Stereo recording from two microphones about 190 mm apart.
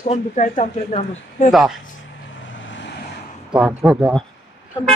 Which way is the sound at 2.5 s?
80° left.